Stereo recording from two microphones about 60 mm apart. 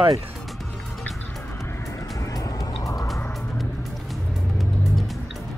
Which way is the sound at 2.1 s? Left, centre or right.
Left.